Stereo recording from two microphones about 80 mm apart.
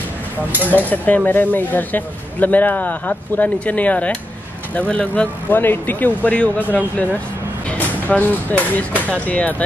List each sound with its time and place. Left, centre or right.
0.7 s speech: left